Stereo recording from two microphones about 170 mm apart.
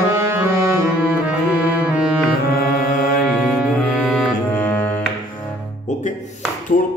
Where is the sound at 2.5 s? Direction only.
60° left (ahead or behind).